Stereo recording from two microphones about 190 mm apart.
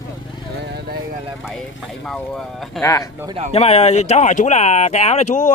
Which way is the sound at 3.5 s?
35° left (ahead or behind).